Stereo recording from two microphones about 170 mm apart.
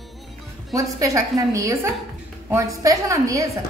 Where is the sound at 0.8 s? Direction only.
20° right (ahead or behind).